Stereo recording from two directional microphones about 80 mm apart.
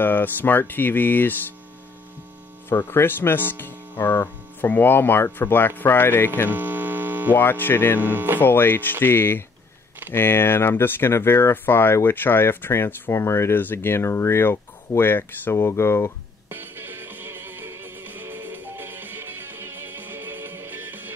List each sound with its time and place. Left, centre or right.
0.0 s speech: left
2.7 s speech: left
6.5 s mains hum: right
7.3 s speech: left
8.0 s speech: right
8.4 s speech: left
16.4 s music: right